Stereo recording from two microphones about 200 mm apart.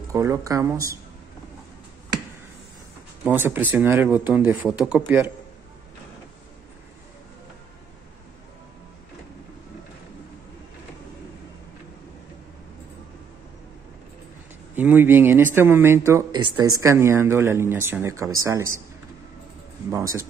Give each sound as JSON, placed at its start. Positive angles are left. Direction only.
{"t": 0.1, "sound": "speech", "side_deg": -15}
{"t": 3.3, "sound": "speech", "side_deg": -10}
{"t": 14.8, "sound": "speech", "side_deg": -10}
{"t": 19.9, "sound": "speech", "side_deg": -15}